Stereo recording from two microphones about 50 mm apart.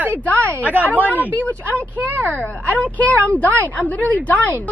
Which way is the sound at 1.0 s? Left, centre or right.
Left.